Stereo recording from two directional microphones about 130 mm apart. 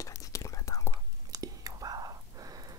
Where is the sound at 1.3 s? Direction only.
30° right (ahead or behind).